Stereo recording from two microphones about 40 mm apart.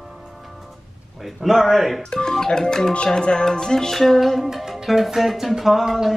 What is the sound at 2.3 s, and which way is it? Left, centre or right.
Music, centre.